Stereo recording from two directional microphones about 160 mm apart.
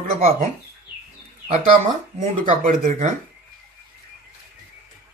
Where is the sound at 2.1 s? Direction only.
55° right (ahead or behind).